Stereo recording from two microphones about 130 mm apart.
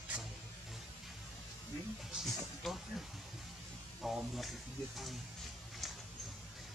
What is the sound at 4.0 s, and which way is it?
Speech, centre (ahead or behind).